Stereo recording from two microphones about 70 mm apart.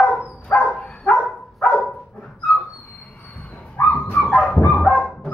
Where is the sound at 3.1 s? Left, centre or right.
Centre.